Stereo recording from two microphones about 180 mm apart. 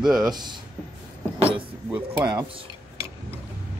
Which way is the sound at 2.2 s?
25° right (ahead or behind).